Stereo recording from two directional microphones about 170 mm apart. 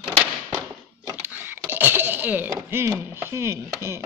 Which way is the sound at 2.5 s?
15° right (ahead or behind).